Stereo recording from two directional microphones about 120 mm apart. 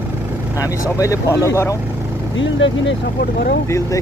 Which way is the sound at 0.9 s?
25° left (ahead or behind).